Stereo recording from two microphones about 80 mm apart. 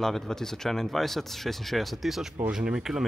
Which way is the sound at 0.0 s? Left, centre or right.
Centre.